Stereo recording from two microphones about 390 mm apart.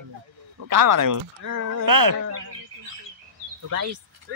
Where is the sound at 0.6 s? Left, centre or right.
Right.